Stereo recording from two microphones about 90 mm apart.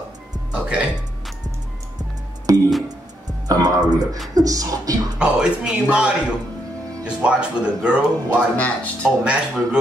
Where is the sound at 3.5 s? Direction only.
45° right (ahead or behind).